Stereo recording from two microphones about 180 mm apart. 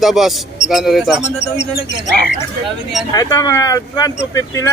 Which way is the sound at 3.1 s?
20° left (ahead or behind).